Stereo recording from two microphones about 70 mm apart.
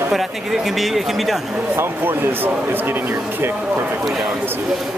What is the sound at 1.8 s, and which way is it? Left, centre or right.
Speech, right.